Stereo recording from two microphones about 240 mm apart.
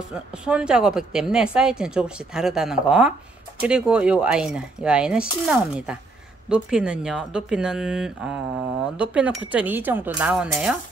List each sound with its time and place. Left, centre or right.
0.1 s speech: centre